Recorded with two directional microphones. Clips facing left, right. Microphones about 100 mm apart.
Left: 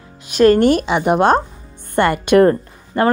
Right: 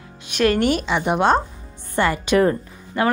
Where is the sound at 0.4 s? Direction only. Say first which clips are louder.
Left 7 dB; 40° left (ahead or behind).